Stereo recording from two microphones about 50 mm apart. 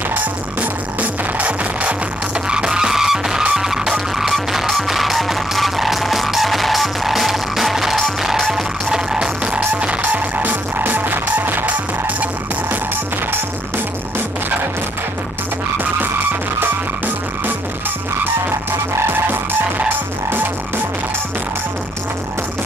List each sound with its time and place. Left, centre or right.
1.4 s music: right
2.5 s vehicle: centre
2.9 s music: centre
8.9 s music: centre
9.6 s music: right